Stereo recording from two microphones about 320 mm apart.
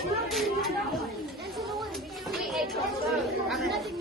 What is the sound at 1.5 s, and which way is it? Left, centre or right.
Chatter, centre.